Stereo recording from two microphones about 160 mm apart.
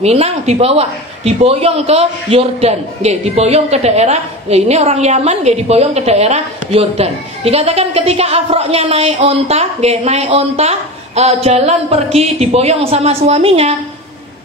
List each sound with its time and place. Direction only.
0.0 s a woman's voice: 40° right (ahead or behind)